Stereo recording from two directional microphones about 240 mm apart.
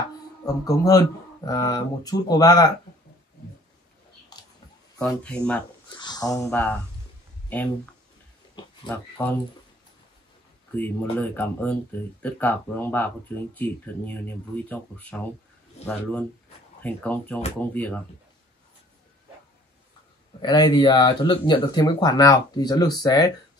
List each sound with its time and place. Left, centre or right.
0.5 s speech: centre
5.0 s speech: centre
5.9 s speech: centre
10.8 s speech: centre
20.4 s speech: centre